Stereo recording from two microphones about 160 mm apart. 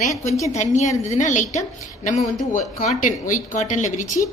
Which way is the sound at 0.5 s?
45° left (ahead or behind).